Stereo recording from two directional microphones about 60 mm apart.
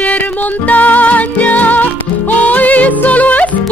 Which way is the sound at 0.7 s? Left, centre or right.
Left.